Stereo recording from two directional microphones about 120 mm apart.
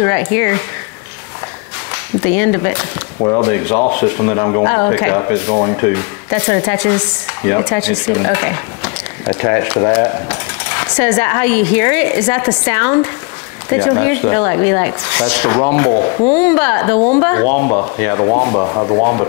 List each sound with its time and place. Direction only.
0.0 s speech: 20° left (ahead or behind)
2.1 s speech: 20° left (ahead or behind)
3.2 s speech: 40° left (ahead or behind)
3.4 s speech: 20° left (ahead or behind)